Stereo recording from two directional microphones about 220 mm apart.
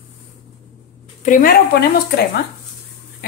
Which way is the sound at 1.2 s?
40° left (ahead or behind).